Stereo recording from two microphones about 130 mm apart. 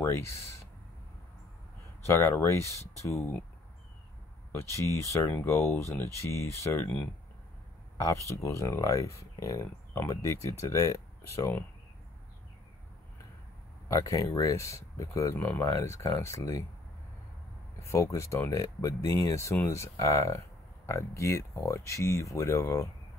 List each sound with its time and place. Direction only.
0.0 s speech: 20° left (ahead or behind)
2.0 s speech: 20° left (ahead or behind)
4.5 s speech: 20° left (ahead or behind)
8.0 s speech: 25° left (ahead or behind)
13.8 s speech: 25° left (ahead or behind)
17.7 s speech: 20° left (ahead or behind)